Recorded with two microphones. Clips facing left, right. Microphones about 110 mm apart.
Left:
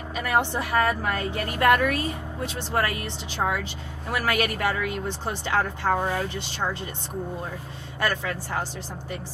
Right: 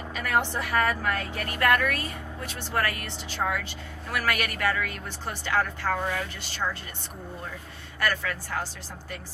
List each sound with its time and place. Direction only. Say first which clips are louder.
0.1 s a woman's voice: left 3 dB; 15° left (ahead or behind)
8.0 s a woman's voice: left 2 dB; 20° left (ahead or behind)